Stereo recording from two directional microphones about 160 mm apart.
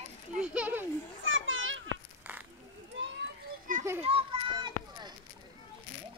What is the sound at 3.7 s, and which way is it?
Children playing, 55° right (ahead or behind).